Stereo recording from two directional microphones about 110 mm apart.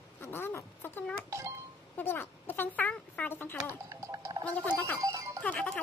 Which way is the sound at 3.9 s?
25° right (ahead or behind).